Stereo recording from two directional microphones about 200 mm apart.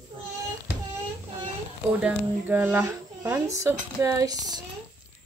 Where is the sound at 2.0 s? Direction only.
5° right (ahead or behind).